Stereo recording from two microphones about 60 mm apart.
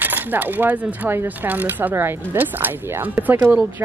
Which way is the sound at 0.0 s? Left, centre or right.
Right.